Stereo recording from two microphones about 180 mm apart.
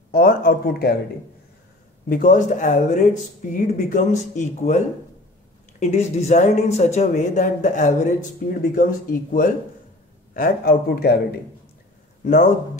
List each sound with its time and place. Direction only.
0.1 s speech: 55° left (ahead or behind)
2.0 s speech: 50° left (ahead or behind)